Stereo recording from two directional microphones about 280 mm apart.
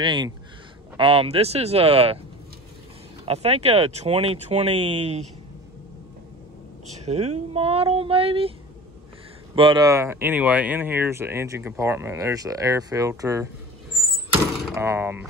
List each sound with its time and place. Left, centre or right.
0.0 s speech: centre
3.3 s speech: right
7.1 s speech: right
9.6 s speech: centre
14.7 s speech: centre